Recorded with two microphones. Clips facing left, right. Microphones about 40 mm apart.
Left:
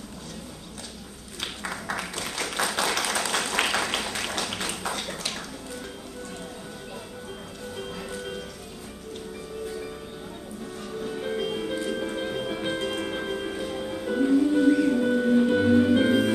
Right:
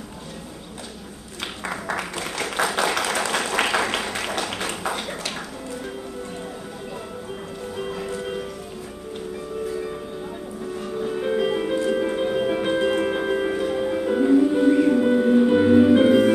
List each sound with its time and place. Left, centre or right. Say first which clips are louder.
1.7 s a sound: right 5 dB; centre
7.7 s music: right 6 dB; centre
10.8 s music: right 6 dB; centre